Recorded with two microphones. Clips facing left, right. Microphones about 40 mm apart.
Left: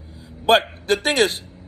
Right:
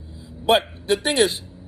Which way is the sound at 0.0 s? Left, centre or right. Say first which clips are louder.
Left 2 dB; left.